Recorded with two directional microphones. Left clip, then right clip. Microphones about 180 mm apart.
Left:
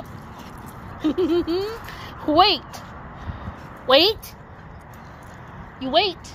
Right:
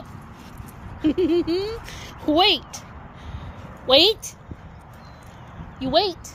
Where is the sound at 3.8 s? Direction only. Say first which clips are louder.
Even; 10° right (ahead or behind).